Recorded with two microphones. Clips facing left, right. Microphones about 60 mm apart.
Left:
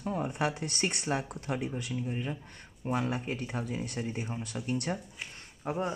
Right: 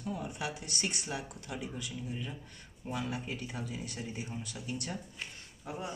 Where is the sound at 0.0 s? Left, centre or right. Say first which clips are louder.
Left 6 dB; left.